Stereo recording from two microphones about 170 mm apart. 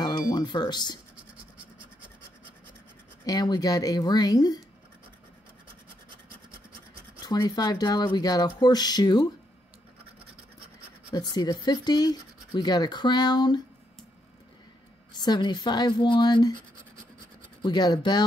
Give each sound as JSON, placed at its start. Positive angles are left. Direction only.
{"t": 0.0, "sound": "a sound", "side_deg": 25}
{"t": 3.3, "sound": "speech", "side_deg": 25}
{"t": 7.2, "sound": "speech", "side_deg": 25}
{"t": 11.1, "sound": "speech", "side_deg": 25}
{"t": 15.1, "sound": "speech", "side_deg": 25}
{"t": 17.6, "sound": "speech", "side_deg": 25}